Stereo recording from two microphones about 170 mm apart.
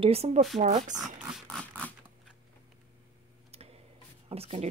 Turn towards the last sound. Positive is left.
turn(degrees=-35)  # may be behind; listen again after turning